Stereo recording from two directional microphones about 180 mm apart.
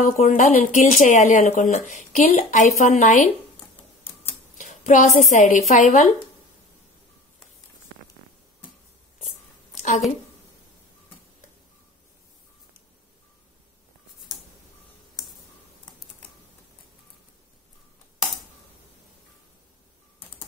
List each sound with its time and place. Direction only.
0.1 s a woman's voice: 45° left (ahead or behind)
3.5 s typewriter: 10° left (ahead or behind)
4.6 s a woman's voice: 45° left (ahead or behind)
9.8 s a sound: 40° left (ahead or behind)